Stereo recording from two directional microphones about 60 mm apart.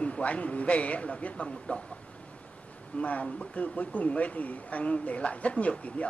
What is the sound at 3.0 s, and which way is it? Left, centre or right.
Speech, left.